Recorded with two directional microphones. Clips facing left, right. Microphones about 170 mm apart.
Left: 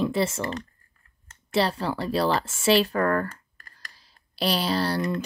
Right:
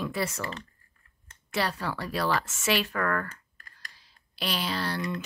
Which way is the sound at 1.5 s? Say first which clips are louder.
Left 6 dB; 30° left (ahead or behind).